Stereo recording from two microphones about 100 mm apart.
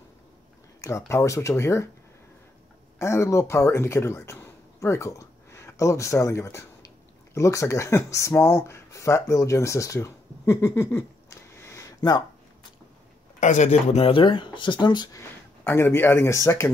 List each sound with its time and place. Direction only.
0.8 s speech: 30° left (ahead or behind)
3.0 s a man's voice: 30° left (ahead or behind)
13.7 s speech: 80° left; by 15.0 s 50° left (ahead or behind)
15.6 s speech: 25° left (ahead or behind)